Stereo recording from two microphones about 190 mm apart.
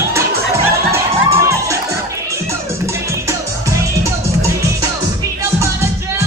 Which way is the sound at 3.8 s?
15° right (ahead or behind).